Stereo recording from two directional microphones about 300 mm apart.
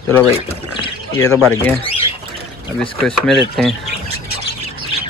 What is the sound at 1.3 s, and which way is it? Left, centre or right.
Speech, centre.